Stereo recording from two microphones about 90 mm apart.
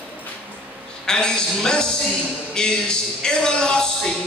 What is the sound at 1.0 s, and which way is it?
Speech, 10° left (ahead or behind).